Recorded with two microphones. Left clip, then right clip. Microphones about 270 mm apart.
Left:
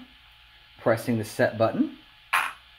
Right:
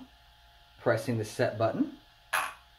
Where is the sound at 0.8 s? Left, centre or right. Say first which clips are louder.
Left 4 dB; left.